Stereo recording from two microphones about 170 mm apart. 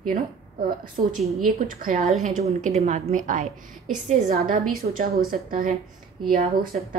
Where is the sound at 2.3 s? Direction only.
40° right (ahead or behind).